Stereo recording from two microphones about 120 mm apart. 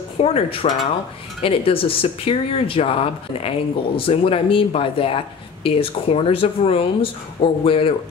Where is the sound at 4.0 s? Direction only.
50° left (ahead or behind).